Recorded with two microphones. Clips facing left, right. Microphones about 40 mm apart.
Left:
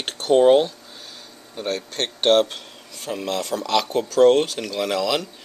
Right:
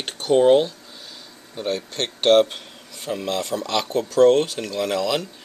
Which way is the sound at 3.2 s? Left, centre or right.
Right.